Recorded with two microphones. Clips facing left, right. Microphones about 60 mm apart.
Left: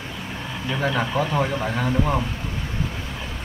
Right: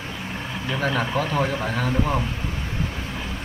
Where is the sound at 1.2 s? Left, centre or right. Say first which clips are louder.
Left 1 dB; centre.